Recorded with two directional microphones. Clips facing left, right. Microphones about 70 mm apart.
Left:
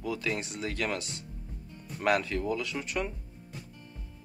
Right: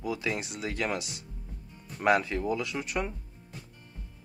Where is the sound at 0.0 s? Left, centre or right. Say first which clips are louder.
Right 1 dB; centre.